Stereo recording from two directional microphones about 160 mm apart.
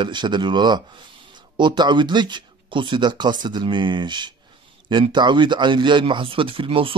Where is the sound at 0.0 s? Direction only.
30° right (ahead or behind).